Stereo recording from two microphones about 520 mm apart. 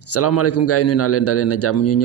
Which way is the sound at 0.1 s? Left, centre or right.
Left.